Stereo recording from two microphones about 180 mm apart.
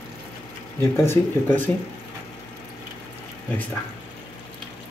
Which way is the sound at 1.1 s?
10° left (ahead or behind).